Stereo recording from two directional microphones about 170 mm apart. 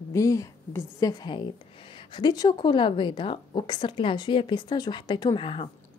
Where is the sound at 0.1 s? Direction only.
20° left (ahead or behind).